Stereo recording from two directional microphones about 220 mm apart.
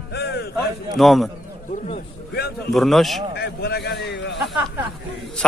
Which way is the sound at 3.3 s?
45° left (ahead or behind).